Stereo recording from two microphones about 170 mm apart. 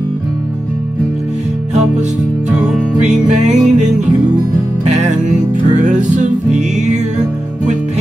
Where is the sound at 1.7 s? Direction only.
45° right (ahead or behind).